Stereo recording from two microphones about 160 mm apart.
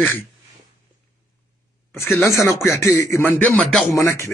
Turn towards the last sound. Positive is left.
turn(degrees=20)  # may be behind; listen again after turning